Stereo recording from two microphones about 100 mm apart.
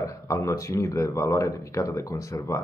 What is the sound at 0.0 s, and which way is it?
Speech, 30° left (ahead or behind).